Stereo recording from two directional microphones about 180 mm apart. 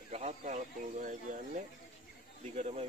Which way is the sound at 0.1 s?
40° right (ahead or behind).